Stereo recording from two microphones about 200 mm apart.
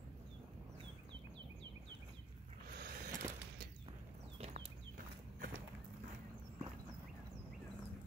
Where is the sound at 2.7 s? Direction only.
50° right (ahead or behind).